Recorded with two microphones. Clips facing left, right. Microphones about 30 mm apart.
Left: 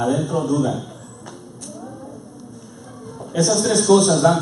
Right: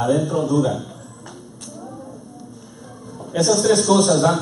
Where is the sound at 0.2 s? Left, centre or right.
Centre.